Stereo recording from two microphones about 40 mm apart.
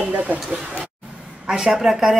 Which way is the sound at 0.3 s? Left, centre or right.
Right.